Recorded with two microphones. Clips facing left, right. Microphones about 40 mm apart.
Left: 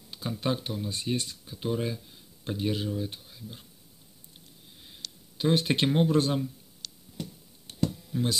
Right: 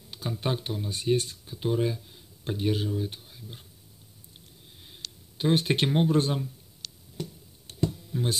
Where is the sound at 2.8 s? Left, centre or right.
Centre.